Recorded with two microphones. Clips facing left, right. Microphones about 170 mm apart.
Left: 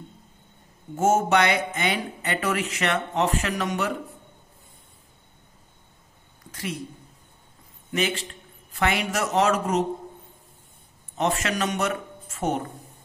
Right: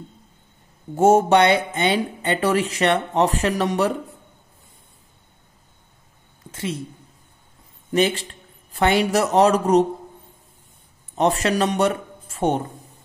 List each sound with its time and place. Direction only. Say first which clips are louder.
0.9 s speech: right 6 dB; 35° right (ahead or behind)
6.5 s speech: right 4 dB; 25° right (ahead or behind)
7.9 s a man's voice: right 7 dB; 35° right (ahead or behind)
11.1 s speech: right 6 dB; 35° right (ahead or behind)